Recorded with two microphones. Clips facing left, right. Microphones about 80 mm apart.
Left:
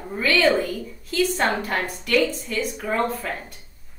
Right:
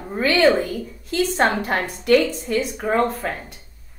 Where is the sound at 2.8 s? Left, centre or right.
Right.